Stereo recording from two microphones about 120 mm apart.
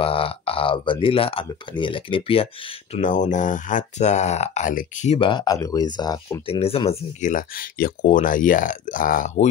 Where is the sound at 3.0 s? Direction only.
90° left.